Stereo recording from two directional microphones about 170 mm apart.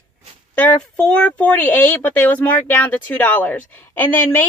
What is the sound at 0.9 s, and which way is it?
Speech, 10° left (ahead or behind).